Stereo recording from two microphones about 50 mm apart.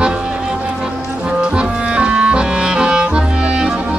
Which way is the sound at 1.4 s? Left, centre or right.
Right.